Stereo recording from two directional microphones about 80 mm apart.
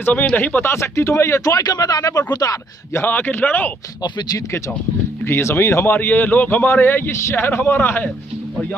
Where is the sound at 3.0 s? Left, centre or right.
Left.